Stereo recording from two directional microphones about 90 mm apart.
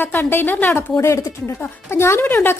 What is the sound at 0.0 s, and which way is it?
Speech, 25° left (ahead or behind).